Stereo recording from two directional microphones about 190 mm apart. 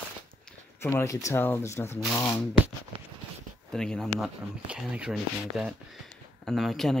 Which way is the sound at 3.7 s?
5° left (ahead or behind).